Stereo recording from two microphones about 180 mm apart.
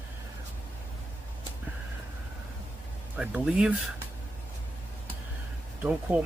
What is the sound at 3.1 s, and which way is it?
Speech, 5° right (ahead or behind).